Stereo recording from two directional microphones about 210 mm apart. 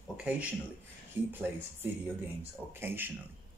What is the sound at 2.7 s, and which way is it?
Speech, 10° right (ahead or behind).